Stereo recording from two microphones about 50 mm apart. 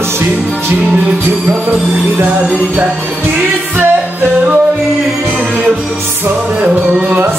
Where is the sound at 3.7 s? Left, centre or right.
Right.